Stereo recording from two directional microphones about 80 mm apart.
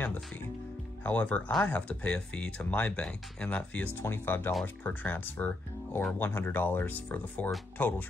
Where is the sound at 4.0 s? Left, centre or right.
Left.